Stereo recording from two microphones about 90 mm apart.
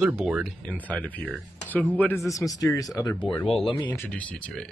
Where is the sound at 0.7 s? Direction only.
15° left (ahead or behind).